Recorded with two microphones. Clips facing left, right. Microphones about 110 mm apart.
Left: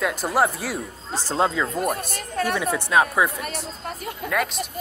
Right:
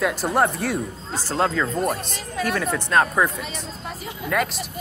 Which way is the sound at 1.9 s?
50° left (ahead or behind).